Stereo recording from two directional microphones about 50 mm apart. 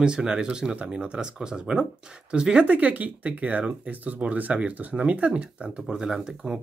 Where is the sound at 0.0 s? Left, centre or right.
Centre.